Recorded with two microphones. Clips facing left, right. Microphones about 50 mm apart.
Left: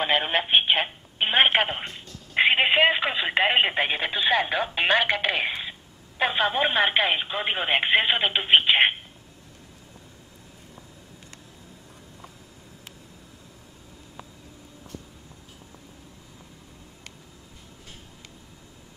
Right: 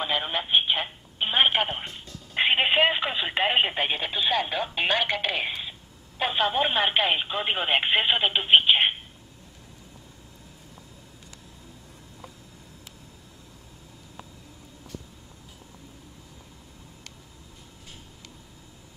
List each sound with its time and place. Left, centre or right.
0.0 s telephone: left
2.3 s telephone: centre
6.8 s speech: centre